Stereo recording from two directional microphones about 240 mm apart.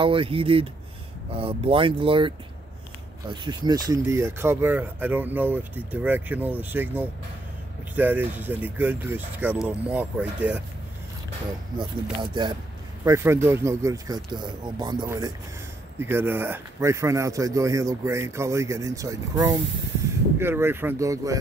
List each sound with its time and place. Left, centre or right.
0.0 s speech: right; by 10.6 s centre
11.8 s speech: centre